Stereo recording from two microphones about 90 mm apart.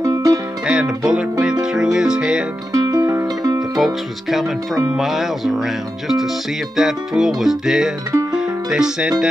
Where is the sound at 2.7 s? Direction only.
45° right (ahead or behind).